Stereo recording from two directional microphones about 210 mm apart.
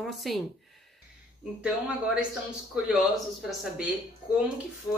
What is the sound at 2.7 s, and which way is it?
Speech, 5° right (ahead or behind).